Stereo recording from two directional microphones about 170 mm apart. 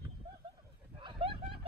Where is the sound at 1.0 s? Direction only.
30° right (ahead or behind).